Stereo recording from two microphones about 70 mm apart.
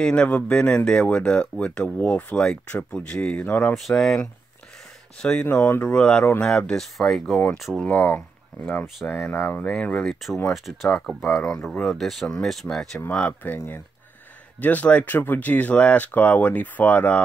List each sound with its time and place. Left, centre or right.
0.0 s speech: centre
3.7 s speech: centre
5.2 s speech: centre
5.5 s speech: left
6.4 s speech: centre
7.8 s speech: left
9.7 s speech: centre
10.5 s speech: centre
13.4 s speech: left